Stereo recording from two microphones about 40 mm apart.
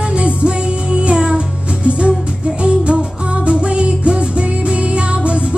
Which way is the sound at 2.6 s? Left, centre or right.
Right.